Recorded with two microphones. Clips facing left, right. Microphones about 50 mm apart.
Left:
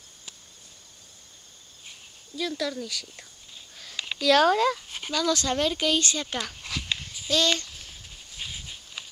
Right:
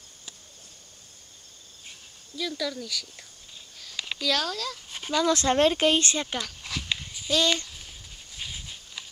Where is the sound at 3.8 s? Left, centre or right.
Centre.